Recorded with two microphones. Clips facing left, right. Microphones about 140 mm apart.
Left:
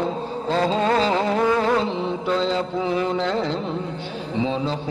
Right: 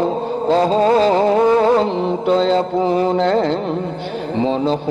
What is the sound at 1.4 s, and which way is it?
Music, 30° right (ahead or behind).